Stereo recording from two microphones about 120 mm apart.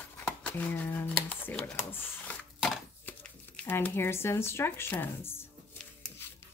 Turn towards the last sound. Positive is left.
turn(degrees=20)  # may be behind; listen again after turning